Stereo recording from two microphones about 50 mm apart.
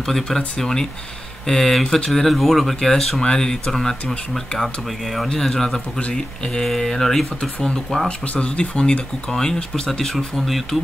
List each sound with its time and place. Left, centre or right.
0.0 s speech: centre
5.3 s speech: centre
5.9 s speech: centre
8.3 s speech: left; by 10.8 s centre